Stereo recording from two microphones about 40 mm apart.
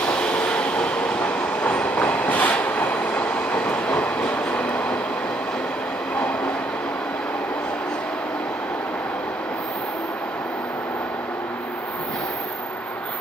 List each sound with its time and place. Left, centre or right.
0.0 s train: left